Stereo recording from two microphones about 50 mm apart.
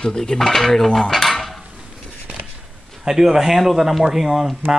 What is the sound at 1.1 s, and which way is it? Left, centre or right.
Dishes, centre.